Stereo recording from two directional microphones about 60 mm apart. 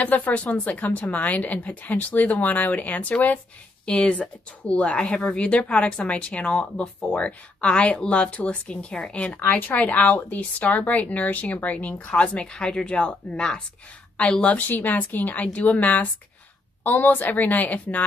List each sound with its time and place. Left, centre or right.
0.0 s a woman's voice: left
3.8 s a woman's voice: centre
14.7 s a woman's voice: left